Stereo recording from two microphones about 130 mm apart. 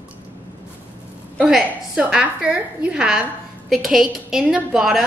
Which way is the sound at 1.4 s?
5° right (ahead or behind).